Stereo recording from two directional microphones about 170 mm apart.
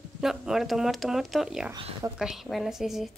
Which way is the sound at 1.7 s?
25° right (ahead or behind).